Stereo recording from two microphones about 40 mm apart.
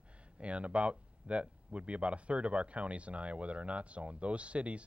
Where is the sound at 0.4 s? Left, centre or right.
Right.